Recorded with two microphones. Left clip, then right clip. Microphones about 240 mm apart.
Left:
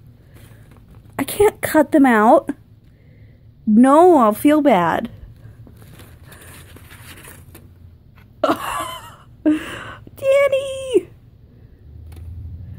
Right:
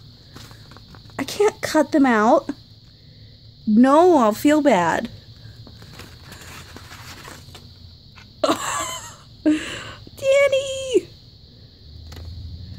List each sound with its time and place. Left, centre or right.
1.1 s speech: centre
3.7 s speech: centre
8.4 s a sound: centre